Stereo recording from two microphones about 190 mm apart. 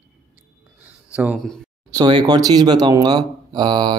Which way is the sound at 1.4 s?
5° left (ahead or behind).